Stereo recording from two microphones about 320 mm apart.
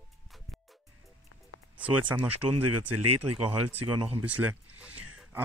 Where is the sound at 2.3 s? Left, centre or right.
Right.